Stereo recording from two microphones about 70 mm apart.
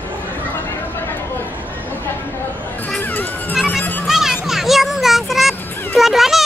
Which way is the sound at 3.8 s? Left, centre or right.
Left.